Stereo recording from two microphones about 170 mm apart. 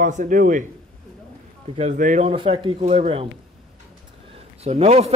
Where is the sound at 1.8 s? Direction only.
45° right (ahead or behind).